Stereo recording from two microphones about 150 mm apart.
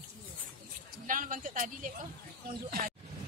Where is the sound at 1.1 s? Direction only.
65° right (ahead or behind).